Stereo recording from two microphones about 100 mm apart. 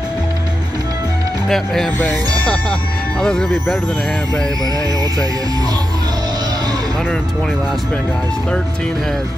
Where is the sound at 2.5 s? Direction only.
10° left (ahead or behind).